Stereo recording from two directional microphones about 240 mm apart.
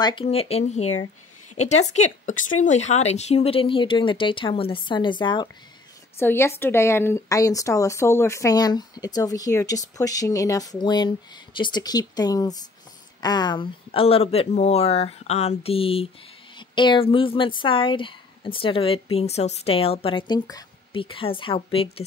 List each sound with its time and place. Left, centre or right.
0.0 s speech: left